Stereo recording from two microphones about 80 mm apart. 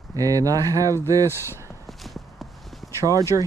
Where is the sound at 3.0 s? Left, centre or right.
Right.